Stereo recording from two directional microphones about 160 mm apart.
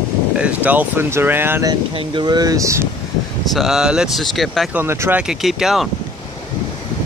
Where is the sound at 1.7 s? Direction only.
30° right (ahead or behind).